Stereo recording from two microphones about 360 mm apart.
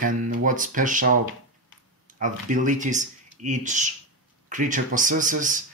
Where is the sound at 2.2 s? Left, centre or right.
Right.